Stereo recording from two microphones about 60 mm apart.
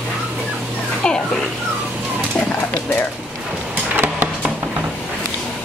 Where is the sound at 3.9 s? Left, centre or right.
Right.